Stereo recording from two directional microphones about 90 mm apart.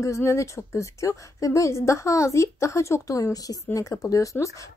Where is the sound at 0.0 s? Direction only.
35° left (ahead or behind).